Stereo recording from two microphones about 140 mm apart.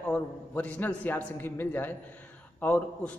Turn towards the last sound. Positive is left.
turn(degrees=10)  # may be behind; listen again after turning